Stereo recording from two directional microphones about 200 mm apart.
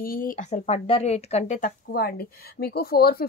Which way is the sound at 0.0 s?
45° left (ahead or behind).